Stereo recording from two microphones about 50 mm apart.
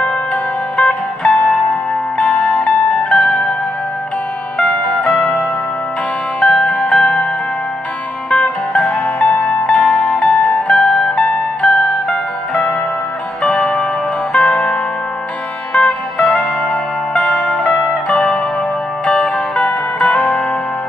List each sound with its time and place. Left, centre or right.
0.3 s music: centre
2.6 s zither: centre
4.6 s music: centre
6.4 s music: centre
8.3 s music: centre
13.4 s music: centre
19.0 s music: centre